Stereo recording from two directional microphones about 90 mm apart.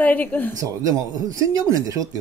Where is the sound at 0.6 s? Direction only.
40° right (ahead or behind).